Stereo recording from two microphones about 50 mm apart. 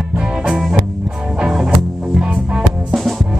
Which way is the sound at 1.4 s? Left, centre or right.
Centre.